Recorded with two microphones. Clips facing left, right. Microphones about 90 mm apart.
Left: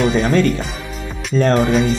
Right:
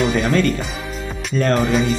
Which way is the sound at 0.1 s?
25° left (ahead or behind).